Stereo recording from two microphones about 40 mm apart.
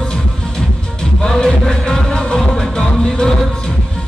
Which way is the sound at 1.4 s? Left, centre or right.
Centre.